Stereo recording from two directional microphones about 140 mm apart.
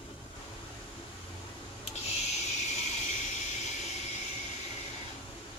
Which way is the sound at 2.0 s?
50° left (ahead or behind).